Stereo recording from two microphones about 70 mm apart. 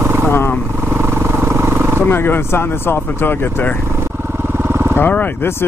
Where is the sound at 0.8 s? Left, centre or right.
Right.